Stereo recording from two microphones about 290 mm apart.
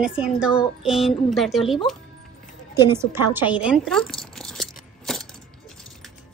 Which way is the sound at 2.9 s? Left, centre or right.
Centre.